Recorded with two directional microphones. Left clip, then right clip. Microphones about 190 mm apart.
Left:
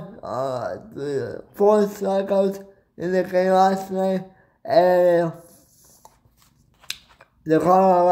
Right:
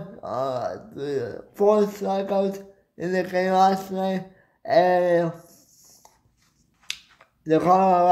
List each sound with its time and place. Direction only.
0.2 s speech: 10° left (ahead or behind)
4.6 s a sound: 15° left (ahead or behind)
6.9 s finger snapping: 15° left (ahead or behind)